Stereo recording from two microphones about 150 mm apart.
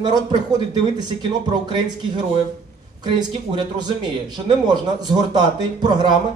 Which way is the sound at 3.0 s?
30° right (ahead or behind).